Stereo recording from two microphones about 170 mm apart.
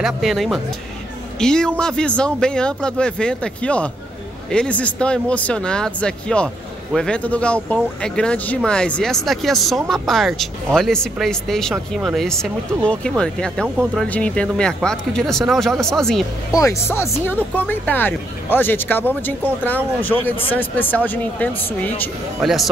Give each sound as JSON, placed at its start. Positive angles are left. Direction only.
{"t": 0.0, "sound": "speech", "side_deg": 0}
{"t": 16.5, "sound": "speech", "side_deg": 15}
{"t": 22.4, "sound": "speech", "side_deg": 0}